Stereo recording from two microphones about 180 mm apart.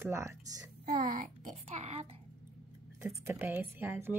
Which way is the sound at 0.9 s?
50° right (ahead or behind).